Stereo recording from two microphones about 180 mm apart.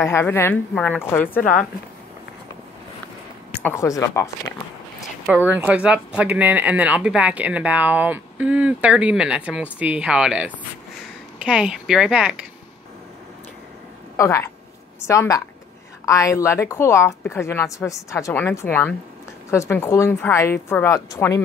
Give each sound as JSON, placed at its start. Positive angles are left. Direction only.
{"t": 0.0, "sound": "a woman's voice", "side_deg": 15}
{"t": 3.6, "sound": "a woman's voice", "side_deg": 15}
{"t": 5.2, "sound": "speech", "side_deg": -10}
{"t": 14.1, "sound": "a woman's voice", "side_deg": 15}